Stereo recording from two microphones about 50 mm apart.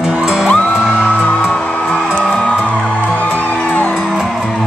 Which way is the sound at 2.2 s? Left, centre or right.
Centre.